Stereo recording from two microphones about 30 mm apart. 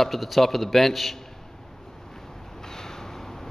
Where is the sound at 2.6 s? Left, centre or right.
Centre.